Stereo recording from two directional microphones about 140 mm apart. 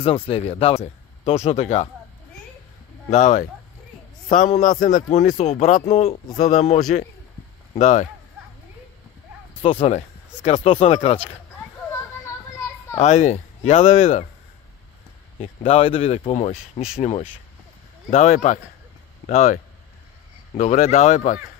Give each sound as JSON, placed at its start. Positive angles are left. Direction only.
{"t": 0.3, "sound": "speech", "side_deg": 45}
{"t": 3.1, "sound": "a man's voice", "side_deg": 60}
{"t": 5.1, "sound": "speech", "side_deg": 50}
{"t": 9.6, "sound": "speech", "side_deg": 45}
{"t": 11.5, "sound": "a sound", "side_deg": 20}
{"t": 12.9, "sound": "speech", "side_deg": 60}
{"t": 15.4, "sound": "speech", "side_deg": 40}
{"t": 18.1, "sound": "speech", "side_deg": 55}